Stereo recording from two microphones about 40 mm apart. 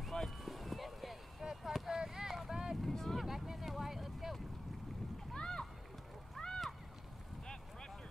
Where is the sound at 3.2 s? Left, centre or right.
Centre.